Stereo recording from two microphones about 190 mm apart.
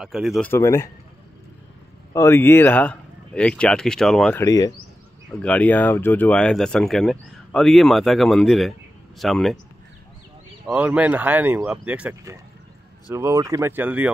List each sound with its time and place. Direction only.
0.0 s speech: centre (ahead or behind)
0.5 s speech: 15° left (ahead or behind)
2.1 s speech: 15° left (ahead or behind)
5.4 s speech: 5° left (ahead or behind)
10.7 s speech: 10° right (ahead or behind)